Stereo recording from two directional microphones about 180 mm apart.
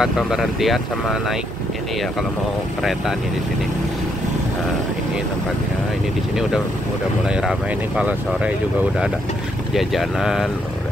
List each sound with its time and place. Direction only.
0.0 s speech: centre (ahead or behind)
2.8 s speech: centre (ahead or behind)
7.2 s speech: 5° right (ahead or behind)
9.8 s speech: centre (ahead or behind)